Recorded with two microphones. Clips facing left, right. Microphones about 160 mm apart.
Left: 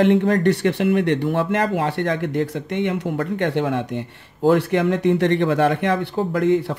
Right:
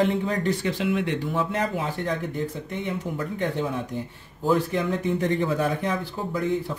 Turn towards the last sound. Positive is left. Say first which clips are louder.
# left 8 dB
turn(degrees=85)